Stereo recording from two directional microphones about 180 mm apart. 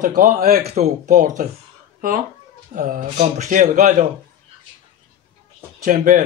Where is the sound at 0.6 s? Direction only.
40° right (ahead or behind).